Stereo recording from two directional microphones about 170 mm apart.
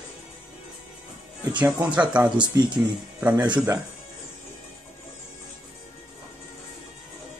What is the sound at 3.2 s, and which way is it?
Speech, 10° right (ahead or behind).